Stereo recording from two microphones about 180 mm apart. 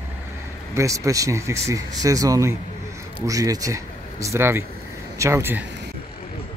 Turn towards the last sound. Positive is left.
turn(degrees=-15)  # may be behind; listen again after turning